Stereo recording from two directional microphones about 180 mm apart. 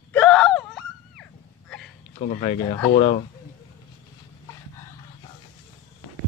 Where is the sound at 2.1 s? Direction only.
35° left (ahead or behind).